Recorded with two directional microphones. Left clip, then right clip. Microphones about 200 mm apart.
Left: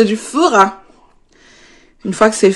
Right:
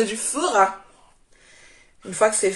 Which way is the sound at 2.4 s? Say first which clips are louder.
Left 11 dB; 55° left (ahead or behind).